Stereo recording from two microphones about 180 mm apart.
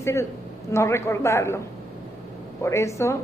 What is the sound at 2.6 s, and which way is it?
Speech, 15° left (ahead or behind).